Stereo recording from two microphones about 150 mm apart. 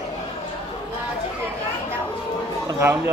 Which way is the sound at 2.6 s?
15° right (ahead or behind).